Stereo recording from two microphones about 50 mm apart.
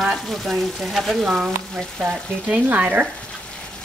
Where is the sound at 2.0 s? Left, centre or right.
Centre.